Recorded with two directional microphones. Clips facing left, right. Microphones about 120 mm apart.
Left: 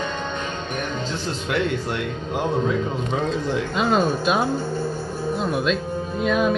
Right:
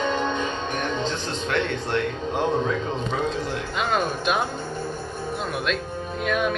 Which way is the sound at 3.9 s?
30° left (ahead or behind).